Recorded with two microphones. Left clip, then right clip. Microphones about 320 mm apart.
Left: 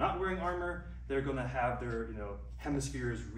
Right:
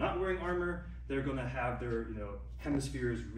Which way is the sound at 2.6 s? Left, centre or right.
Centre.